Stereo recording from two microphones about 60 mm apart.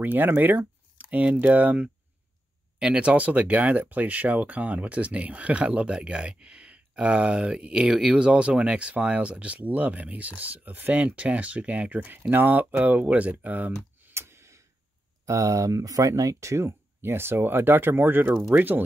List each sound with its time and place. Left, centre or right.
0.0 s speech: right
14.1 s a sound: right
15.2 s speech: right